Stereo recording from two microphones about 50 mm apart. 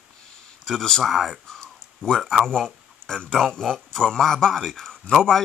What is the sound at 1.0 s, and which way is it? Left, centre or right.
Speech, centre.